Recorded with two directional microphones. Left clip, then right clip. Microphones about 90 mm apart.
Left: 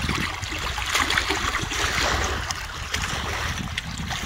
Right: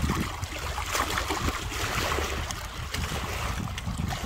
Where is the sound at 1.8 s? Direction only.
45° left (ahead or behind).